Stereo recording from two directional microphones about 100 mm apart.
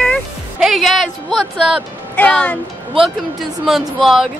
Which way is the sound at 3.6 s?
5° right (ahead or behind).